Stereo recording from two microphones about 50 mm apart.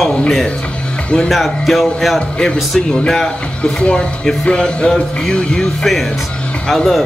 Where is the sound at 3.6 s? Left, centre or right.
Centre.